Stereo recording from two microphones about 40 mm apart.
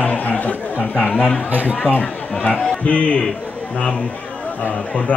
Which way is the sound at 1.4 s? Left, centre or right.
Right.